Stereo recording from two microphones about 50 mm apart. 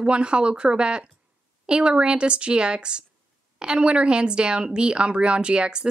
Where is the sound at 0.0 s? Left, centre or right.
Right.